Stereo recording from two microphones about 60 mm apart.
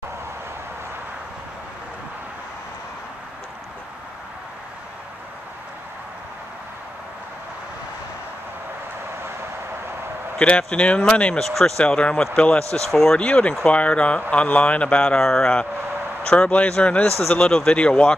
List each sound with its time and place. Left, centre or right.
10.7 s speech: centre
11.3 s speech: centre
11.8 s a man's voice: centre
12.8 s speech: centre
13.2 s a man's voice: centre
15.2 s speech: centre
16.3 s a man's voice: centre